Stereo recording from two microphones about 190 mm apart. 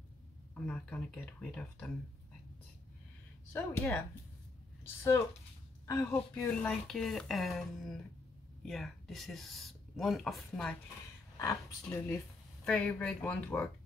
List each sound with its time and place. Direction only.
0.7 s speech: 5° left (ahead or behind)
3.5 s speech: 10° left (ahead or behind)
5.9 s speech: 15° left (ahead or behind)
11.3 s speech: 15° left (ahead or behind)
12.6 s speech: 5° left (ahead or behind)